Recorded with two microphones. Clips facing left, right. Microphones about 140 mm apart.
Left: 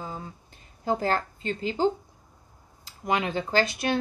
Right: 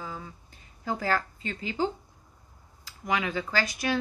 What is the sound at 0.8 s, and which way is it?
Speech, 25° left (ahead or behind).